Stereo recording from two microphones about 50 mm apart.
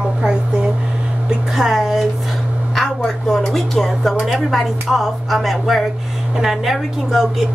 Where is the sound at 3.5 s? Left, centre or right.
Centre.